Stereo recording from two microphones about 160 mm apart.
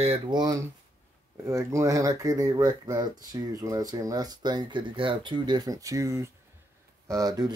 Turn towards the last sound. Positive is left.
turn(degrees=-25)  # may be behind; listen again after turning